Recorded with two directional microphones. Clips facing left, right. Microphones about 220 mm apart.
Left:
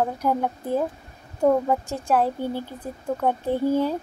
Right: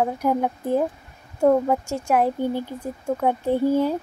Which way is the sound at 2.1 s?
15° right (ahead or behind).